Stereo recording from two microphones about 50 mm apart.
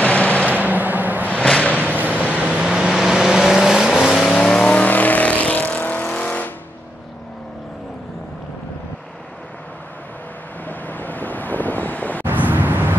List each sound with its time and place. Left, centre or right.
0.0 s a sound: left
0.5 s a sound: right
1.2 s a sound: left
2.0 s vehicle: right
2.3 s vehicle: right
2.7 s vehicle: centre
4.3 s vehicle: centre
4.8 s vehicle: left
10.7 s vehicle: left
12.3 s vehicle: right